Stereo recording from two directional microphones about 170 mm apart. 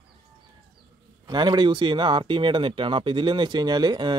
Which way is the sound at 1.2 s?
25° right (ahead or behind).